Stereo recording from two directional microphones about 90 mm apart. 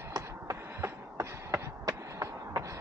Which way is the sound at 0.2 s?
30° right (ahead or behind).